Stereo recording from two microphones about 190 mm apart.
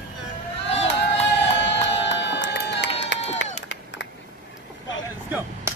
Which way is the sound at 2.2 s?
65° left (ahead or behind).